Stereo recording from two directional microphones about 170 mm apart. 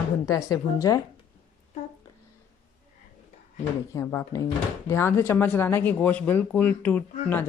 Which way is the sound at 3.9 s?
15° left (ahead or behind).